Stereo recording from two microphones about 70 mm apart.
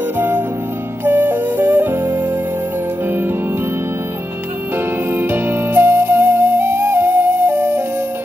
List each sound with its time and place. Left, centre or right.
1.0 s flute: right
5.1 s flute: right